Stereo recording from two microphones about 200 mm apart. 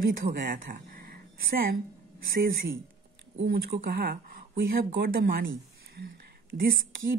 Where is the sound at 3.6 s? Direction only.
50° right (ahead or behind).